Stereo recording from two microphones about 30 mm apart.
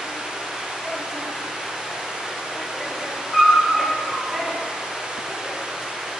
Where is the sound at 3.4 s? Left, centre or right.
Centre.